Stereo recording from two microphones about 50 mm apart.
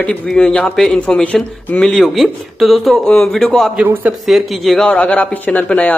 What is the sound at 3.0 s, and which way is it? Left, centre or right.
A man's voice, centre.